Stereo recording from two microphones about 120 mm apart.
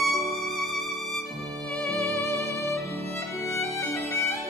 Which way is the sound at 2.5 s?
25° left (ahead or behind).